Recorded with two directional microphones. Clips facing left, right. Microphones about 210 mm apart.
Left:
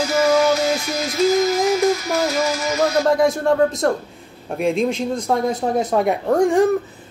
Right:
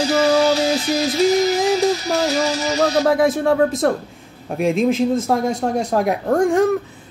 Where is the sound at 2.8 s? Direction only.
Centre (ahead or behind).